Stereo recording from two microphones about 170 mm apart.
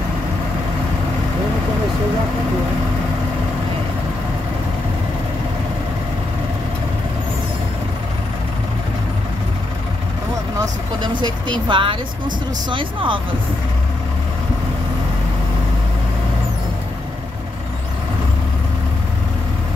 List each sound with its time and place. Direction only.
10.6 s vehicle: 25° right (ahead or behind)
11.6 s speech: 30° right (ahead or behind)